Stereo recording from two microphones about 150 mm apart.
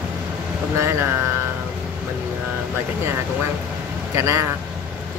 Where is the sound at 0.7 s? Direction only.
15° right (ahead or behind).